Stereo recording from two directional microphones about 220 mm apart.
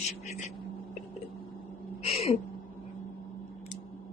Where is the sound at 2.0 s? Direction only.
25° left (ahead or behind).